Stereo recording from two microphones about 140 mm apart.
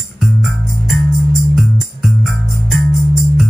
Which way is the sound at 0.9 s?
Centre (ahead or behind).